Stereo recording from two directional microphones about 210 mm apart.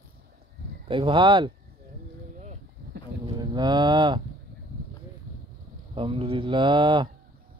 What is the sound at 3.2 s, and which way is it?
Speech, 20° right (ahead or behind).